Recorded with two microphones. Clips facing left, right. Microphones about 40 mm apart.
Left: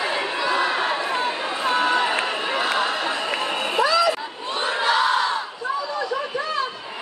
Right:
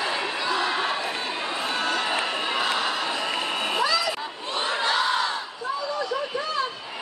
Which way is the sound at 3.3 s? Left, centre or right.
Left.